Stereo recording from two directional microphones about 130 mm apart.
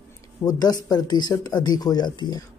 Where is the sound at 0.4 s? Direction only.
30° left (ahead or behind).